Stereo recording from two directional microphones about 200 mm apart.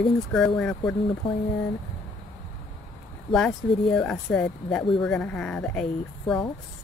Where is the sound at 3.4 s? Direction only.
5° left (ahead or behind).